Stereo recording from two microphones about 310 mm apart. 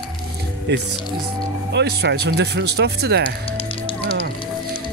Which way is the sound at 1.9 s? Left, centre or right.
Right.